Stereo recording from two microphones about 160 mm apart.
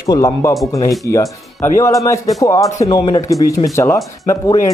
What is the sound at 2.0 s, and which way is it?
Speech, 20° left (ahead or behind).